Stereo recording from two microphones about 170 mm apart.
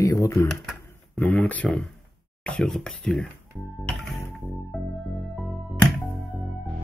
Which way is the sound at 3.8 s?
Centre (ahead or behind).